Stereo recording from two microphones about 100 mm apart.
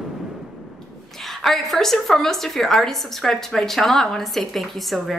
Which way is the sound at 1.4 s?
Centre (ahead or behind).